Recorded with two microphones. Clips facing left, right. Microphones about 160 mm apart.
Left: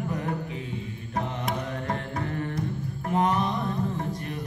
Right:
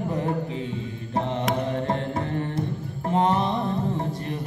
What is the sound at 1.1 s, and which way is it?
Mantra, 30° right (ahead or behind).